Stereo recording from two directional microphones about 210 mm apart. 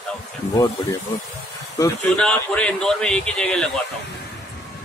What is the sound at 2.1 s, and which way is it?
Speech, 5° left (ahead or behind).